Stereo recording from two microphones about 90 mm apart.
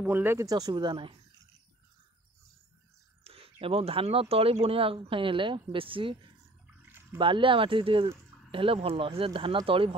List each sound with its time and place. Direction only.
0.0 s speech: 20° right (ahead or behind)
0.4 s speech: 45° right (ahead or behind)
0.7 s speech: 65° right (ahead or behind)
3.3 s speech: 90° right
6.8 s a sound: 25° right (ahead or behind)
7.2 s speech: 65° right (ahead or behind); by 9.9 s 85° right